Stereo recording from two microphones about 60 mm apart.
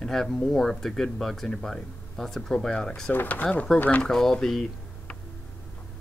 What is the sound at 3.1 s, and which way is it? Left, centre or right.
Speech, left.